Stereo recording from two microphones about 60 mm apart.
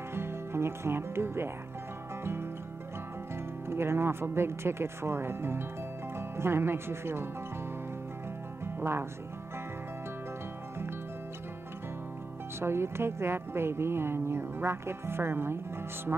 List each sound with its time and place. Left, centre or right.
0.1 s music: right
3.6 s speech: right
8.7 s speech: right
12.5 s speech: right
16.1 s speech: right